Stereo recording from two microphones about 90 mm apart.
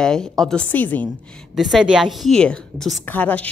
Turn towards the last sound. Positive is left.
turn(degrees=15)  # may be behind; listen again after turning